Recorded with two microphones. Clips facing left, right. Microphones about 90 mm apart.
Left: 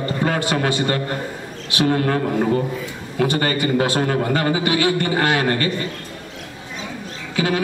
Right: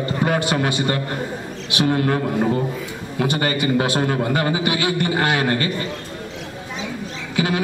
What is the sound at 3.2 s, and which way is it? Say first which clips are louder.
A man's voice: left 1 dB; 20° right (ahead or behind).